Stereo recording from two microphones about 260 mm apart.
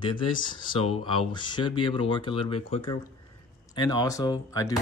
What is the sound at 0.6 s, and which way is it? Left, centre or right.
Speech, left.